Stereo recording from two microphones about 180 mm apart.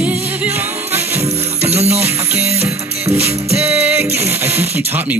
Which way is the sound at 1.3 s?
35° right (ahead or behind).